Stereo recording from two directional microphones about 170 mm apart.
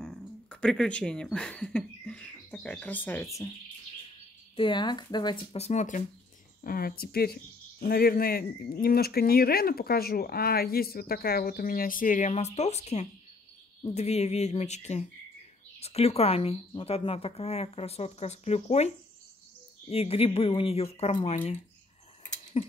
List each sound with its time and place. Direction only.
0.0 s speech: 5° left (ahead or behind)
4.6 s a woman's voice: 30° left (ahead or behind); by 6.0 s 45° left (ahead or behind)
6.6 s a woman's voice: 60° left (ahead or behind); by 18.9 s 40° left (ahead or behind)
19.9 s a woman's voice: 35° left (ahead or behind)
22.5 s a sound: 35° left (ahead or behind)